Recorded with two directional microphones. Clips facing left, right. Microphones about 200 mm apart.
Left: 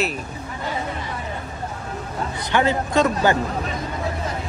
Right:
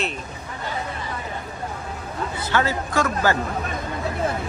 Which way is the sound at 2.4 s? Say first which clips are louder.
Left 3 dB; 20° left (ahead or behind).